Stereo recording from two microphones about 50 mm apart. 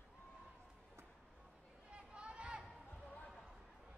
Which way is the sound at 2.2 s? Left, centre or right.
Right.